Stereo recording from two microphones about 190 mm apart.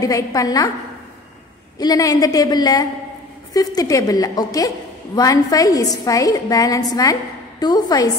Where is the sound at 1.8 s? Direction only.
20° left (ahead or behind).